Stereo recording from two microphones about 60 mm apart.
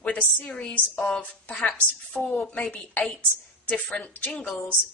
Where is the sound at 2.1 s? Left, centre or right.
Left.